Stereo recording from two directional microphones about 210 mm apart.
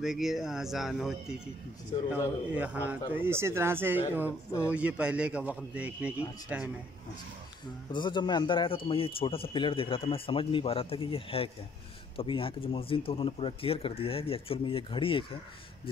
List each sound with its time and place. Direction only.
0.0 s speech: centre (ahead or behind)
2.5 s a man's voice: 5° right (ahead or behind)
4.5 s speech: 10° left (ahead or behind)
4.7 s a man's voice: 5° right (ahead or behind)
7.9 s a man's voice: 20° left (ahead or behind)